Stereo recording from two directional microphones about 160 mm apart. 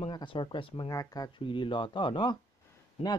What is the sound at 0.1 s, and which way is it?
Speech, 30° left (ahead or behind).